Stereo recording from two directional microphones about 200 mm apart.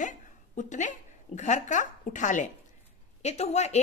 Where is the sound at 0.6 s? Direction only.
40° left (ahead or behind).